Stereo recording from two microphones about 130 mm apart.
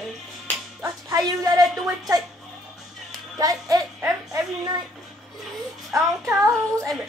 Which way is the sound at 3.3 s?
30° right (ahead or behind).